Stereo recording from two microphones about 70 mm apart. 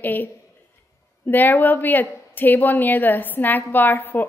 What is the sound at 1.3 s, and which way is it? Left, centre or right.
A woman's voice, left.